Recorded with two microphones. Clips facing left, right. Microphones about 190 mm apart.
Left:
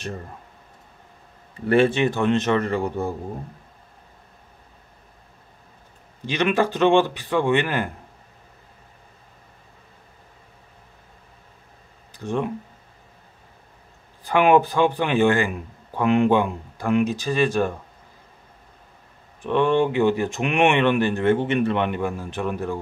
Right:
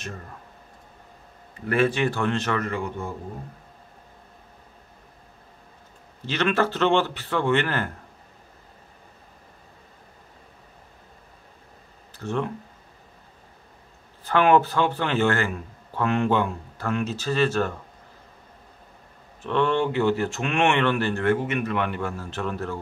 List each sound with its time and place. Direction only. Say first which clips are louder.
1.7 s a man's voice: left 4 dB; 25° left (ahead or behind)
6.2 s speech: left 2 dB; 15° left (ahead or behind)
12.1 s speech: left 2 dB; 15° left (ahead or behind)
14.2 s speech: left 2 dB; 15° left (ahead or behind)
19.4 s speech: left 3 dB; 15° left (ahead or behind)